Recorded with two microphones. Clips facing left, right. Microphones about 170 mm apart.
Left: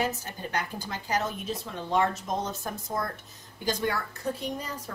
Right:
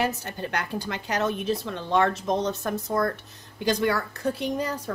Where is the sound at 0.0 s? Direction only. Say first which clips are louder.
Right 3 dB; 70° right (ahead or behind).